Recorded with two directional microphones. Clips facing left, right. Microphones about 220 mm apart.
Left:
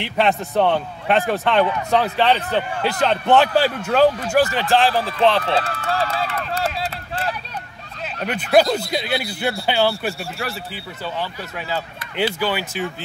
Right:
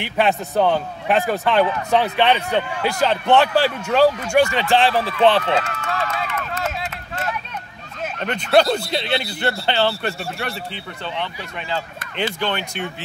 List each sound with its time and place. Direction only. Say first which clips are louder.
0.0 s a man's voice: even; centre (ahead or behind)
5.4 s run: even; 35° left (ahead or behind)
8.3 s a man's voice: even; 5° left (ahead or behind)